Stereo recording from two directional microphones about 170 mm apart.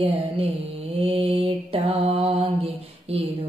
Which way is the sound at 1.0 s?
35° right (ahead or behind).